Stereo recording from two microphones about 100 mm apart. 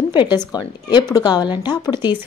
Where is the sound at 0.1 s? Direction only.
50° left (ahead or behind).